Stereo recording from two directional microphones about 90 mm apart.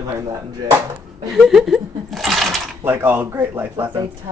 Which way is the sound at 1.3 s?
5° right (ahead or behind).